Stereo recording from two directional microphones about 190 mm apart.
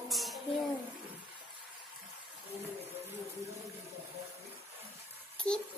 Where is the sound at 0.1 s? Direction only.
Centre (ahead or behind).